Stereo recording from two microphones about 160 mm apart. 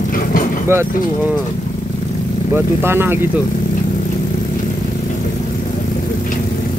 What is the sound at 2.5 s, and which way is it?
Speech, 15° right (ahead or behind).